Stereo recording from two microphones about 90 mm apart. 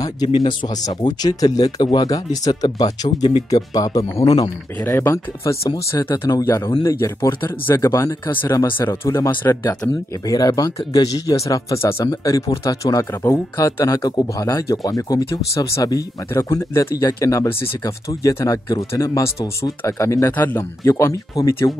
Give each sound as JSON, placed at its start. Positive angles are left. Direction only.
{"t": 0.3, "sound": "speech", "side_deg": 60}
{"t": 0.8, "sound": "speech", "side_deg": 45}
{"t": 4.8, "sound": "speech", "side_deg": 30}
{"t": 10.2, "sound": "speech", "side_deg": 45}
{"t": 20.3, "sound": "speech", "side_deg": 25}
{"t": 21.0, "sound": "speech", "side_deg": 35}